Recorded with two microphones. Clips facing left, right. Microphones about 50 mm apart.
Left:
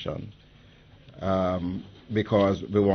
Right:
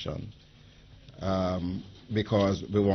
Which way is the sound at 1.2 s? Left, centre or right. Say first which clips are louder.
Left 4 dB; centre.